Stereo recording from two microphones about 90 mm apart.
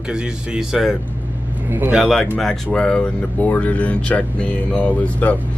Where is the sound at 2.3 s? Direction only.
5° left (ahead or behind).